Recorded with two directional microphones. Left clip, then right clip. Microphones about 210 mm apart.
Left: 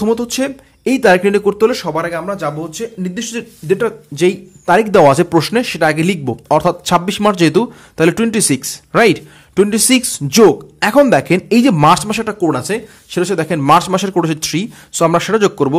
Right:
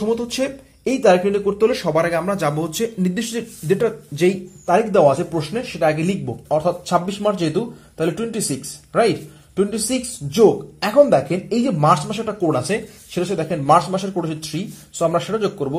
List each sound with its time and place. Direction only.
0.0 s speech: 30° left (ahead or behind)
1.7 s speech: 10° left (ahead or behind)
2.0 s speech: 5° right (ahead or behind)
3.2 s speech: 10° left (ahead or behind)
4.6 s speech: 30° left (ahead or behind)
5.0 s speech: 40° left (ahead or behind)
12.5 s speech: 15° left (ahead or behind)
13.2 s speech: 30° left (ahead or behind)